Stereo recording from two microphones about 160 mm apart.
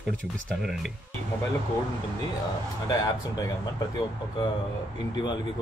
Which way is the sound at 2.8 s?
25° left (ahead or behind).